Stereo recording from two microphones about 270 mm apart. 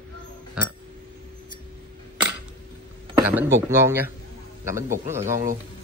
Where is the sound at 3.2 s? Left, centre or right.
Centre.